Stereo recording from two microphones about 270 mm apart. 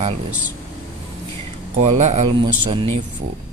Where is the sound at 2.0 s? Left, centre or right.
Right.